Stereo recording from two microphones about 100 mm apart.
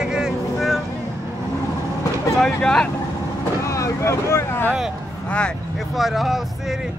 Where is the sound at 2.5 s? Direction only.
10° left (ahead or behind).